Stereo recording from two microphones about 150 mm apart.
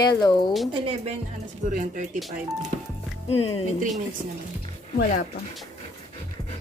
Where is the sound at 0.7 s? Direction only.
40° right (ahead or behind).